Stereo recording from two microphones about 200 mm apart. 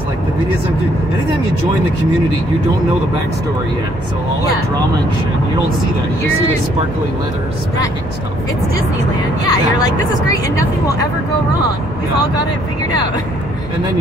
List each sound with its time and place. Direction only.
9.5 s speech: 20° left (ahead or behind)